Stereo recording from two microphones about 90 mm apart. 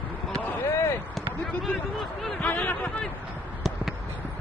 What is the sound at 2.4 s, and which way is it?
Speech, 15° left (ahead or behind).